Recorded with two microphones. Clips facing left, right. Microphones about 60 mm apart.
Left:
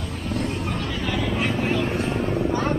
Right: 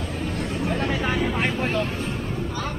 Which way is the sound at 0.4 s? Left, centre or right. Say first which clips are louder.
Right 2 dB; right.